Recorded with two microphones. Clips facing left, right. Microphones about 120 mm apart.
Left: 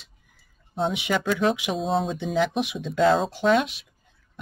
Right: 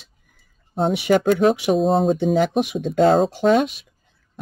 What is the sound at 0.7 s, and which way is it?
Speech, 45° right (ahead or behind).